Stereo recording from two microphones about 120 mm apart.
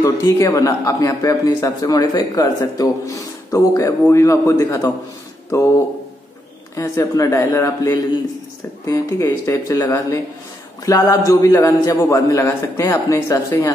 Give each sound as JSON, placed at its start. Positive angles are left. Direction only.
{"t": 0.0, "sound": "a man's voice", "side_deg": 25}
{"t": 6.7, "sound": "a man's voice", "side_deg": 25}